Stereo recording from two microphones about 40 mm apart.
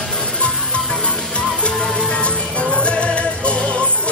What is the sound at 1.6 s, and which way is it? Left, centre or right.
Music, left.